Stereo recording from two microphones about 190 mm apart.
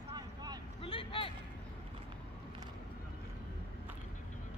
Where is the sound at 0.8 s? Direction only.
30° left (ahead or behind).